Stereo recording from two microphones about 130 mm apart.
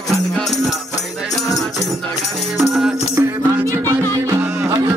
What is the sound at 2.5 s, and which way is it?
Music, centre (ahead or behind).